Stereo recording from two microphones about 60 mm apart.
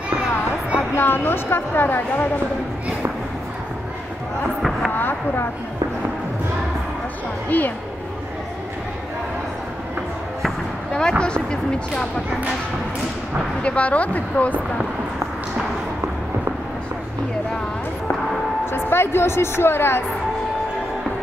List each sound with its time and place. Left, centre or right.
0.9 s a woman's voice: left
4.6 s a sound: centre
4.9 s a woman's voice: left
7.4 s a woman's voice: left
10.9 s speech: centre
13.6 s speech: left
18.7 s a woman's voice: left